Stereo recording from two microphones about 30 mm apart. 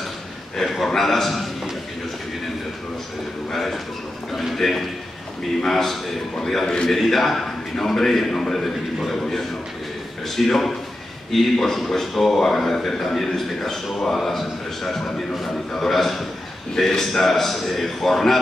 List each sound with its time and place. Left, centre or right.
0.6 s a man's voice: centre
3.5 s a man's voice: centre
6.6 s a man's voice: left
6.9 s a man's voice: centre